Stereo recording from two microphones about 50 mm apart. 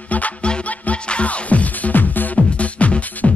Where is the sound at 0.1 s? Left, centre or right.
Left.